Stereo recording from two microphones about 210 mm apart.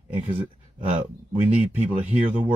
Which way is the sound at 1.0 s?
10° right (ahead or behind).